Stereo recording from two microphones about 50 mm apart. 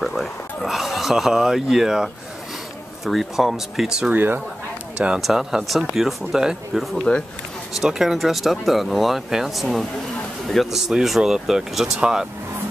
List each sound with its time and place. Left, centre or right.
0.0 s a sound: centre
3.1 s speech: centre
4.1 s speech: right
4.9 s speech: centre
5.2 s speech: centre